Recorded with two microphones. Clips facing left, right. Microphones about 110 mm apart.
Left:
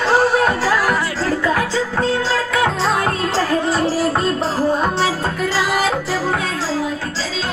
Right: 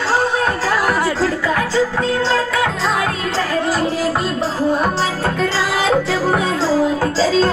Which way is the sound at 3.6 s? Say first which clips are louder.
Even; centre (ahead or behind).